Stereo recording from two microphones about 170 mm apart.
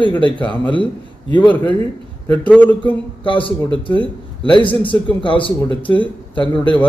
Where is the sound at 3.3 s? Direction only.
30° left (ahead or behind).